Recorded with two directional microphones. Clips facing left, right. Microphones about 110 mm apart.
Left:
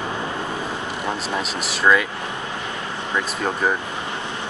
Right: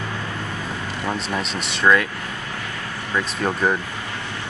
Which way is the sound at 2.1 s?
20° left (ahead or behind).